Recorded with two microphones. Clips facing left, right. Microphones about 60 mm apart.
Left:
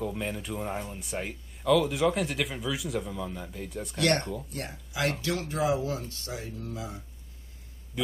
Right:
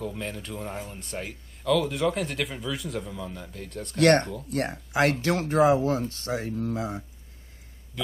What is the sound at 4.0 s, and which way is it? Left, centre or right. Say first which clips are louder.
Speech: right 7 dB; right.